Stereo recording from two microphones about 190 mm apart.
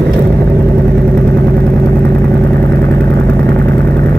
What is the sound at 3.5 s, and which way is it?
Vehicle, 60° right (ahead or behind).